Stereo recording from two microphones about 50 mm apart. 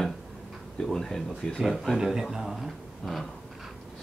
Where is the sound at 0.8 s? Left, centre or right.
Centre.